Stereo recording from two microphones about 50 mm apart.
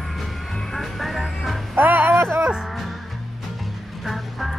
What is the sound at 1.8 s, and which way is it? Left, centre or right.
Music, right.